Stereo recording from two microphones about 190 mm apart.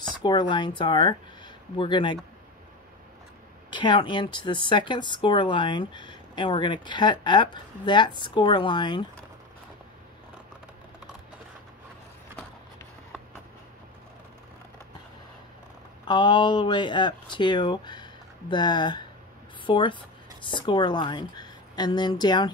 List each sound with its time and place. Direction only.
0.2 s speech: 25° left (ahead or behind)
3.7 s speech: 25° left (ahead or behind)
16.1 s a woman's voice: 25° left (ahead or behind)